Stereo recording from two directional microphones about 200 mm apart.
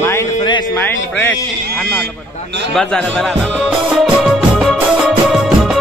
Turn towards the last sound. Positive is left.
turn(degrees=0)  # may be behind; listen again after turning